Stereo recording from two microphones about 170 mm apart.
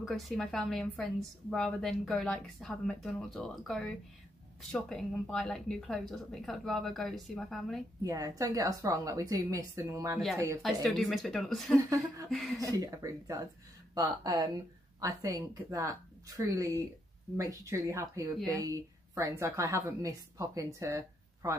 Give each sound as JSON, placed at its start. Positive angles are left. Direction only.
{"t": 0.0, "sound": "a woman's voice", "side_deg": 0}
{"t": 8.0, "sound": "a woman's voice", "side_deg": -20}
{"t": 10.6, "sound": "a woman's voice", "side_deg": 0}
{"t": 11.8, "sound": "a woman's voice", "side_deg": -20}
{"t": 12.3, "sound": "a woman's voice", "side_deg": 0}
{"t": 12.5, "sound": "a woman's voice", "side_deg": -20}